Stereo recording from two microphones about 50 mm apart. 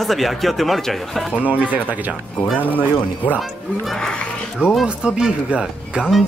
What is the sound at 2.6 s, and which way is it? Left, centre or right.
Speech, left.